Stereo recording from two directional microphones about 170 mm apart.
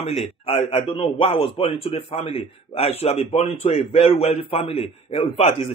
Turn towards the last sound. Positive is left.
turn(degrees=35)  # may be behind; listen again after turning